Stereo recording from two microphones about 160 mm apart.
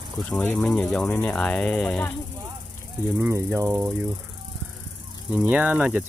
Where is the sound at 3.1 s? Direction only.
15° right (ahead or behind).